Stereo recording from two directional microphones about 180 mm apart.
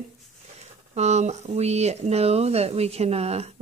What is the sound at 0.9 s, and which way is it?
Speech, 40° right (ahead or behind).